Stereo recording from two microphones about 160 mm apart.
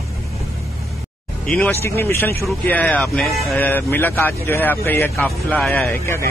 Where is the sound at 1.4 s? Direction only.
5° left (ahead or behind).